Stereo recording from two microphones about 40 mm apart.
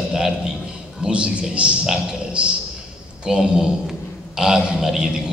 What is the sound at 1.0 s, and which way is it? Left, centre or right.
Speech, right.